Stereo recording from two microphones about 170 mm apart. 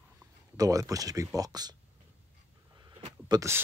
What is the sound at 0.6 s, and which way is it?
Speech, 20° right (ahead or behind).